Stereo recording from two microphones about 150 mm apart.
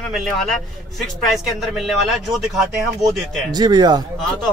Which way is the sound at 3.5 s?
30° right (ahead or behind).